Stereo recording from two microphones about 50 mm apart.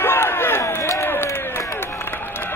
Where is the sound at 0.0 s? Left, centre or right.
Left.